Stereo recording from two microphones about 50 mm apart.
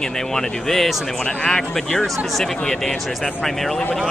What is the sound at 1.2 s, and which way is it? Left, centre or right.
Speech, left.